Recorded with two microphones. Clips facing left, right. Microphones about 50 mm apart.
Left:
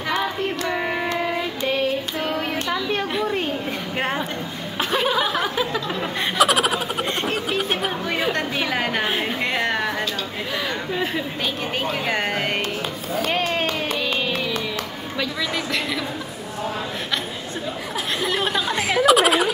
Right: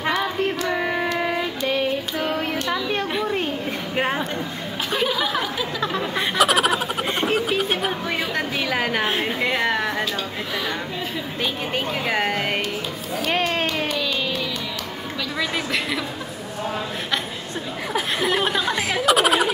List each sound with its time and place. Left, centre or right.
0.7 s music: centre
2.1 s child singing: centre
2.7 s a sound: centre
3.9 s speech: centre
5.0 s a sound: left
6.1 s chuckle: centre
8.3 s a sound: centre
11.7 s speech: centre
13.5 s a sound: centre
13.9 s music: left
15.3 s a woman's voice: centre
18.2 s speech: centre